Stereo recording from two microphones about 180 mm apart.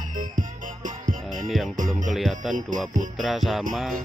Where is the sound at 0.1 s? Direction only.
45° right (ahead or behind).